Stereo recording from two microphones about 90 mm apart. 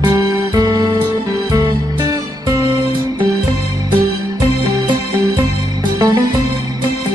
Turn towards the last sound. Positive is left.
turn(degrees=-45)  # may be behind; listen again after turning